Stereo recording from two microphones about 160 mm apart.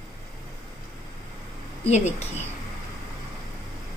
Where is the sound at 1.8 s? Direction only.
45° left (ahead or behind).